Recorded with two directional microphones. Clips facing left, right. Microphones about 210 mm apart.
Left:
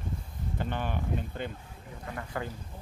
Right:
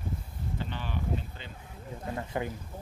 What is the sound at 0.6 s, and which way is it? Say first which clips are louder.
Speech: left 4 dB; 50° left (ahead or behind).